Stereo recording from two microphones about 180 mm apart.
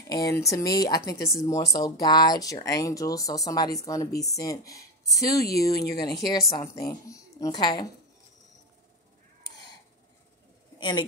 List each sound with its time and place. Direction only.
0.1 s speech: 20° left (ahead or behind)
10.8 s speech: 25° left (ahead or behind)